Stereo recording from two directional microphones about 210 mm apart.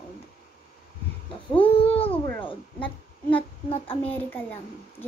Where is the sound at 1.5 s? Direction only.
25° left (ahead or behind).